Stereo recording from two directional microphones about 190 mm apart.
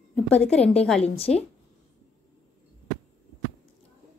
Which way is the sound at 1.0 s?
30° left (ahead or behind).